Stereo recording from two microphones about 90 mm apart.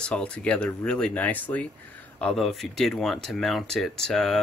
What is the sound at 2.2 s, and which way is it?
Speech, 5° left (ahead or behind).